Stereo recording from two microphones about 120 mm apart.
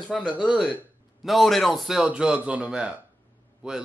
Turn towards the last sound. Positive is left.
turn(degrees=-5)  # may be behind; listen again after turning